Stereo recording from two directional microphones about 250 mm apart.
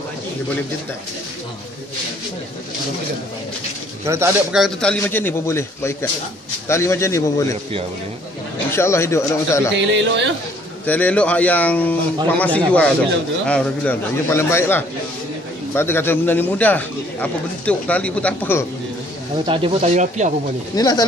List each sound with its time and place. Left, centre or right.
4.0 s a man's voice: centre
8.7 s speech: centre
9.8 s speech: right
10.9 s a man's voice: centre
19.4 s speech: right
20.7 s speech: centre